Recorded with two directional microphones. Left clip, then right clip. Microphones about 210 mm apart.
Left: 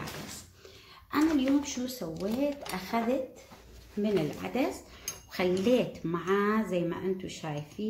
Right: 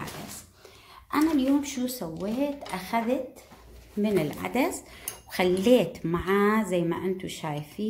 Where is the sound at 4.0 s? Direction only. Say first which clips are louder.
Right 3 dB; 35° right (ahead or behind).